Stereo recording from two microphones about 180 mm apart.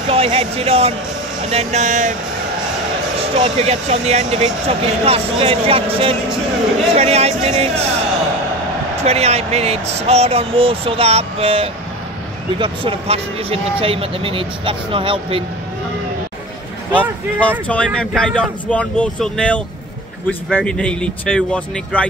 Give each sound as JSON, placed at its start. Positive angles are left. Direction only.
{"t": 0.1, "sound": "speech", "side_deg": -35}
{"t": 3.2, "sound": "speech", "side_deg": -30}
{"t": 9.0, "sound": "speech", "side_deg": -35}
{"t": 17.4, "sound": "speech", "side_deg": 5}